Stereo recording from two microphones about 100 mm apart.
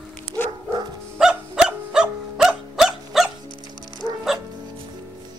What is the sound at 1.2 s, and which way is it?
Dog, 10° right (ahead or behind).